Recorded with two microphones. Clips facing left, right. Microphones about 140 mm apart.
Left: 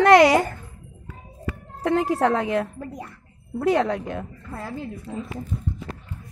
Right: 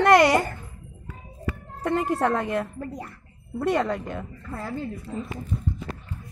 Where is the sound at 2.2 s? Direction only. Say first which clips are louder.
Left 3 dB; 90° left.